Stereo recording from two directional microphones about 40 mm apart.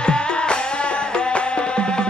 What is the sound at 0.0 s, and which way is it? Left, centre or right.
Music, left.